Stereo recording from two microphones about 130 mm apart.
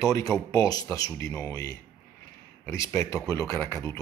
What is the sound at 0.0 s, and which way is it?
Speech, 25° left (ahead or behind).